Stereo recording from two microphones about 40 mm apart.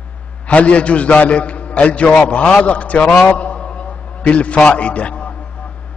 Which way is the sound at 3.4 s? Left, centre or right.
Left.